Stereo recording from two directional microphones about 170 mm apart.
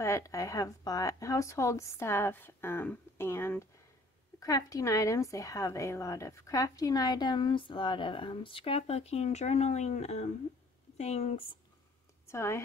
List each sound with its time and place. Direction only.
0.0 s a woman's voice: 15° left (ahead or behind); by 11.5 s 35° left (ahead or behind)
12.3 s speech: 15° left (ahead or behind)